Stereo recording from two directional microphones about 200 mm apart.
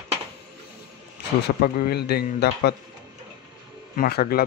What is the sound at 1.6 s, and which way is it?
A man's voice, 50° left (ahead or behind).